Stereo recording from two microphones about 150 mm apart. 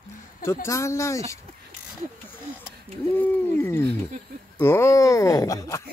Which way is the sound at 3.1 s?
10° left (ahead or behind).